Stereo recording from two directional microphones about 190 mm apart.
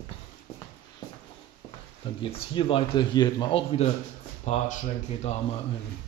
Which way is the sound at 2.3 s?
25° left (ahead or behind).